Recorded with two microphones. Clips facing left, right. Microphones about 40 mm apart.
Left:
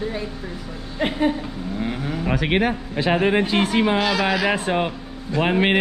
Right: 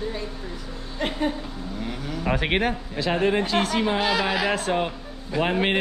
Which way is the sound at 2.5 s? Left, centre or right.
Centre.